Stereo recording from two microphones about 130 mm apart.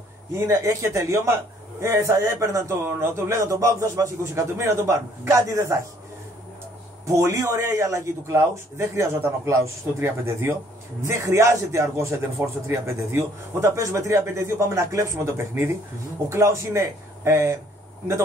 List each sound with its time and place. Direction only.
0.3 s a man's voice: 20° right (ahead or behind)
7.1 s a man's voice: 20° right (ahead or behind)